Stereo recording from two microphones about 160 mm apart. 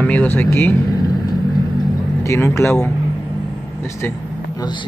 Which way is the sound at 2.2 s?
20° left (ahead or behind).